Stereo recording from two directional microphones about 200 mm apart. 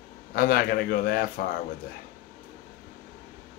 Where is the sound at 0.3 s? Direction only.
50° left (ahead or behind).